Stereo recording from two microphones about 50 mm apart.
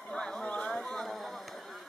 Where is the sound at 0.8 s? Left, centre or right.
Centre.